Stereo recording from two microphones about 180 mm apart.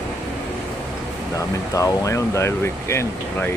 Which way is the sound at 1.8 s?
20° left (ahead or behind).